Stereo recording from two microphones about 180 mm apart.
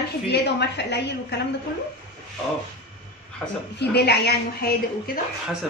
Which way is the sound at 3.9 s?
65° left (ahead or behind).